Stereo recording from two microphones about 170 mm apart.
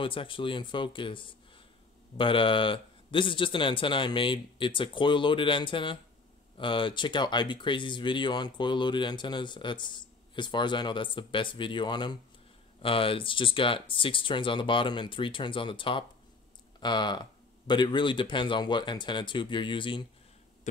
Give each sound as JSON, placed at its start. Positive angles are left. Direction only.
{"t": 0.0, "sound": "speech", "side_deg": 30}